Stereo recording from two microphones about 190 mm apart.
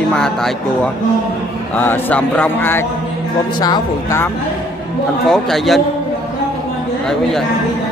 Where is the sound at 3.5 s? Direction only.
20° left (ahead or behind).